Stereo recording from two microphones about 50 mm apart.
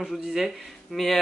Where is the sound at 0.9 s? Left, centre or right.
Centre.